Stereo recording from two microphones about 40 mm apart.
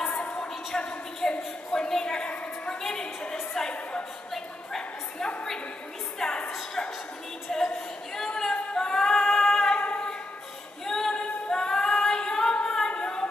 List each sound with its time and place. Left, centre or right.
0.7 s a woman's voice: left
6.1 s a woman's voice: centre
7.5 s a sound: centre
8.7 s female singing: centre
9.8 s a sound: left
10.9 s female singing: centre
12.5 s singing: centre